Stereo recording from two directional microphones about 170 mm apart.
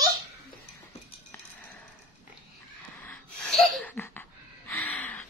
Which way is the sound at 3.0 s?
10° left (ahead or behind).